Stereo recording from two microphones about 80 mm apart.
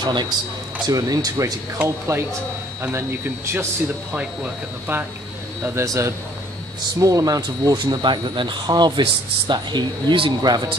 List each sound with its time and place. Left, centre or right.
0.0 s speech: right
0.8 s speech: right
2.1 s a man's voice: right
4.1 s speech: centre
5.6 s a man's voice: right
7.7 s speech: right